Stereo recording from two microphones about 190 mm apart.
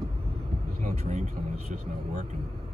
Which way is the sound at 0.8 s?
35° right (ahead or behind).